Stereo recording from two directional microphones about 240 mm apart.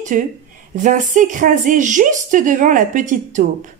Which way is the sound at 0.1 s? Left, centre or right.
Right.